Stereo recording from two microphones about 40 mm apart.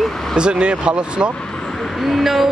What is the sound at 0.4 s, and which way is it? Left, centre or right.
Speech, right.